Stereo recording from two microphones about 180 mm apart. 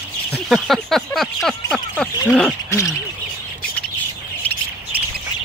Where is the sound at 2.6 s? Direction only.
15° left (ahead or behind).